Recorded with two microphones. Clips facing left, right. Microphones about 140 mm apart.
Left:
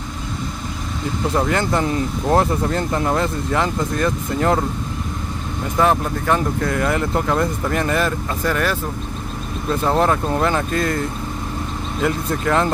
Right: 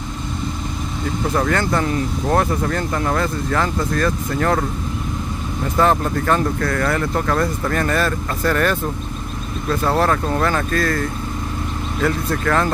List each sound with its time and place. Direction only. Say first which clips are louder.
1.3 s speech: even; 20° left (ahead or behind)
5.8 s speech: right 1 dB; 10° left (ahead or behind)